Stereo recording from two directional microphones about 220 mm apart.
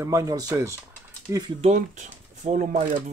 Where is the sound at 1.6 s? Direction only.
30° right (ahead or behind).